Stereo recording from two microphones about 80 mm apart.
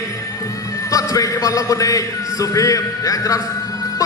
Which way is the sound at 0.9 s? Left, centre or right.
Left.